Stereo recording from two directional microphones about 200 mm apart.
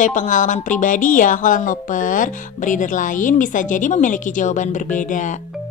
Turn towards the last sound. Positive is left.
turn(degrees=40)  # may be behind; listen again after turning